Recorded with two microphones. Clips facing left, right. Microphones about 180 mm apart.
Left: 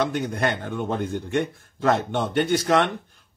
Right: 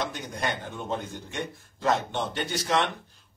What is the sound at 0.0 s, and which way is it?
A man's voice, 60° left (ahead or behind).